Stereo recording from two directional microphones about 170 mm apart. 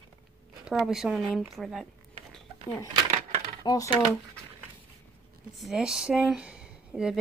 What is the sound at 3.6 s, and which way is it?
Speech, 20° left (ahead or behind).